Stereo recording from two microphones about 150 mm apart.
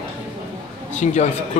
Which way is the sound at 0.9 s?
50° left (ahead or behind).